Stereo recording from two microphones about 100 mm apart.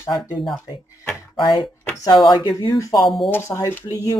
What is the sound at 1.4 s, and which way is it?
Speech, 55° left (ahead or behind).